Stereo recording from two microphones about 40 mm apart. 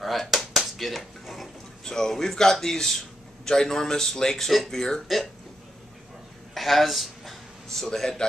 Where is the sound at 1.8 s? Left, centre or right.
Centre.